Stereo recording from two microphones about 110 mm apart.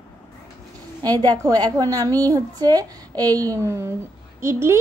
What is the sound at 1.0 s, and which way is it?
A woman's voice, 35° right (ahead or behind).